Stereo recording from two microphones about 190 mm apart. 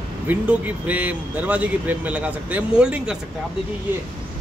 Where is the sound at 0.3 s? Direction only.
10° right (ahead or behind).